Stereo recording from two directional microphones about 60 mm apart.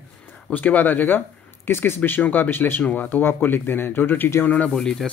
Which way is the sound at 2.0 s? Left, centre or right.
Left.